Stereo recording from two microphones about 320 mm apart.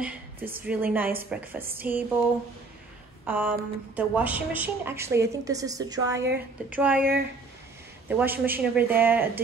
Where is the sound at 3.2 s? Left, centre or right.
Centre.